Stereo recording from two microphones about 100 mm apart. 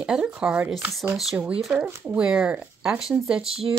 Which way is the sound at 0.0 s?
10° right (ahead or behind).